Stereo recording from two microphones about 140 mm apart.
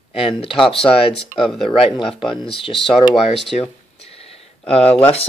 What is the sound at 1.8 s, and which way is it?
Speech, 40° left (ahead or behind).